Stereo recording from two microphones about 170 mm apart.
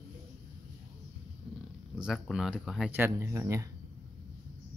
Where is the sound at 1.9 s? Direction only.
5° right (ahead or behind); by 3.7 s 20° right (ahead or behind).